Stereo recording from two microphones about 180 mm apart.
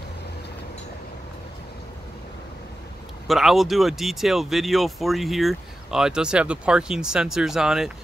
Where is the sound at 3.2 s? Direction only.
Centre (ahead or behind).